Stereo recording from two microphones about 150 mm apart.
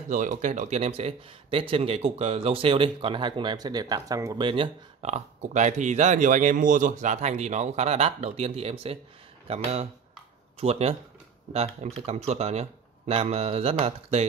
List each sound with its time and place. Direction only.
0.1 s speech: 55° right (ahead or behind); by 4.5 s 25° right (ahead or behind)
4.5 s speech: 40° right (ahead or behind)